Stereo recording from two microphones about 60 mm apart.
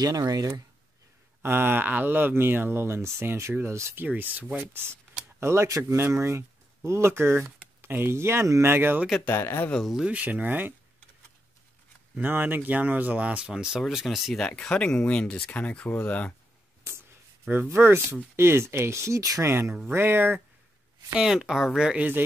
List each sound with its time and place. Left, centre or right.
0.0 s speech: right
1.4 s speech: right
4.0 s speech: right
5.4 s speech: right
9.3 s speech: left
10.0 s speech: right
12.2 s speech: right
13.5 s speech: centre
14.4 s speech: centre
17.7 s speech: right
19.4 s speech: right
19.9 s speech: right
21.2 s speech: centre